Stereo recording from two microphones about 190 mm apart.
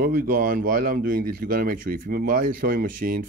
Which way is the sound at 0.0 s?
50° right (ahead or behind).